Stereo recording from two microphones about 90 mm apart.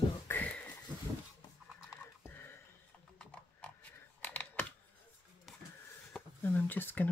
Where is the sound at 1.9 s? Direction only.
20° left (ahead or behind).